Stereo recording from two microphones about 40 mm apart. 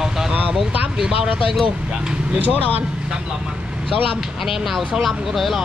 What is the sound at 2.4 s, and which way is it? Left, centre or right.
Speech, right.